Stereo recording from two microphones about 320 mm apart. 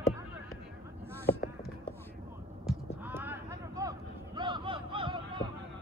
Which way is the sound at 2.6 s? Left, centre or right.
Centre.